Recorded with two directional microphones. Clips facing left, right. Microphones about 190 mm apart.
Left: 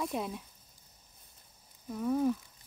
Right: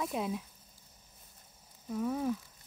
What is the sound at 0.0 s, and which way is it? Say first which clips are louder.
Speech: right 1 dB; centre (ahead or behind).